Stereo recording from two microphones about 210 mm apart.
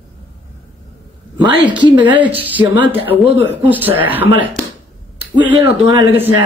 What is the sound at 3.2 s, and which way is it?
Speech, 10° right (ahead or behind).